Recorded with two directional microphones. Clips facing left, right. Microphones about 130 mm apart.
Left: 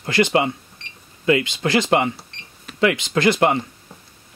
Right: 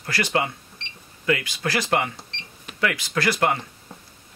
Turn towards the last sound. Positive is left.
turn(degrees=20)  # may be behind; listen again after turning